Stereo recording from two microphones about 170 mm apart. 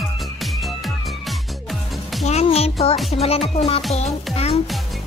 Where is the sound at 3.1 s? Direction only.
35° left (ahead or behind).